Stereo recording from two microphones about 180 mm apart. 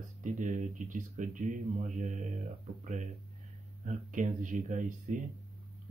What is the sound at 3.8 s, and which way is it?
Speech, 45° right (ahead or behind).